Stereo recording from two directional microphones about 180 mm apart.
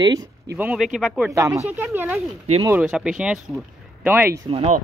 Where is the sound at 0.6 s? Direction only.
10° right (ahead or behind).